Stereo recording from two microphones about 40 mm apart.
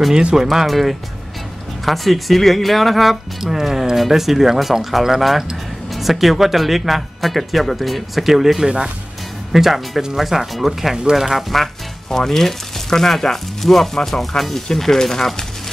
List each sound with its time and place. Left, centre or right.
0.1 s speech: centre
0.7 s speech: centre
8.6 s speech: right
9.5 s speech: centre
11.6 s speech: centre